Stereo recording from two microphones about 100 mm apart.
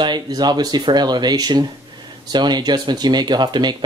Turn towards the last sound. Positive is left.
turn(degrees=-45)  # may be behind; listen again after turning